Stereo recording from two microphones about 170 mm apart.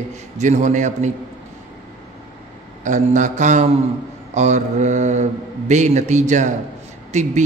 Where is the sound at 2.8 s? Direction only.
45° right (ahead or behind).